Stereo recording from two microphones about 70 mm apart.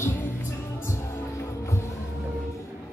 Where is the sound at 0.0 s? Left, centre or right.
Left.